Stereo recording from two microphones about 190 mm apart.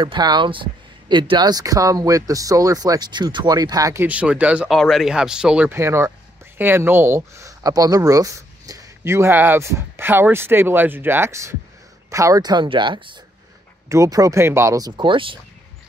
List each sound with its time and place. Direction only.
0.0 s speech: 25° right (ahead or behind)